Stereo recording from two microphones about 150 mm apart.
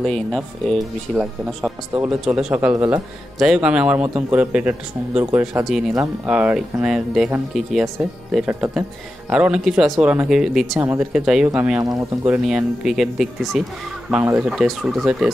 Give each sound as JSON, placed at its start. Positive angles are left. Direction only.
{"t": 0.0, "sound": "speech", "side_deg": 5}
{"t": 2.7, "sound": "speech", "side_deg": -20}
{"t": 3.3, "sound": "a man's voice", "side_deg": -5}
{"t": 10.8, "sound": "a man's voice", "side_deg": -15}
{"t": 11.1, "sound": "speech", "side_deg": -5}
{"t": 11.8, "sound": "speech", "side_deg": -25}
{"t": 12.3, "sound": "a man's voice", "side_deg": -5}